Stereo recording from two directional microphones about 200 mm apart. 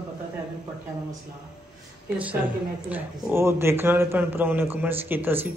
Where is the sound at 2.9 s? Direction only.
10° right (ahead or behind).